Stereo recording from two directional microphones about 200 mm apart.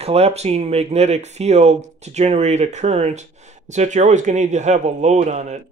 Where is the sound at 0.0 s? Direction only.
30° right (ahead or behind).